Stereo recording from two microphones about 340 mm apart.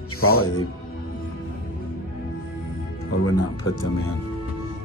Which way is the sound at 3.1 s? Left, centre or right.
Left.